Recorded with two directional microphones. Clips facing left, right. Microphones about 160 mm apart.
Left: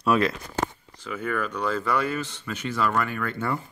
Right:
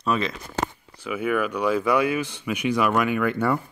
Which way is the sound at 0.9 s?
10° right (ahead or behind).